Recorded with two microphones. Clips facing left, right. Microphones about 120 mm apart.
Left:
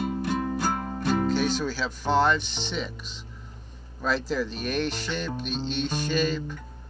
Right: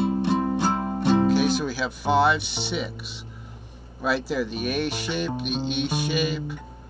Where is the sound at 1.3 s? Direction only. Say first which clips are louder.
Right 4 dB; 10° right (ahead or behind).